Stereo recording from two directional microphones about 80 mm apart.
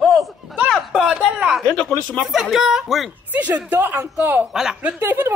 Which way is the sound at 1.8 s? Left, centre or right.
Centre.